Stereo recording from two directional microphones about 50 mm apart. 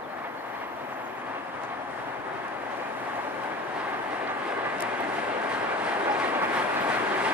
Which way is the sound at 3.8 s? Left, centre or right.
Right.